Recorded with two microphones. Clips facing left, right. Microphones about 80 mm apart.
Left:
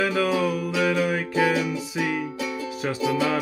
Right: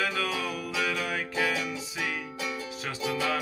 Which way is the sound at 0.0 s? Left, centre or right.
Centre.